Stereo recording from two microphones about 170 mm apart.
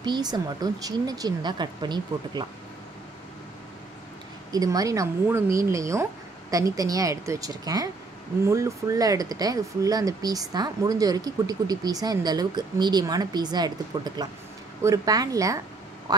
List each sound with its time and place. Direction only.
0.0 s speech: 25° right (ahead or behind)
4.5 s speech: 20° right (ahead or behind)
16.1 s quack: 25° right (ahead or behind)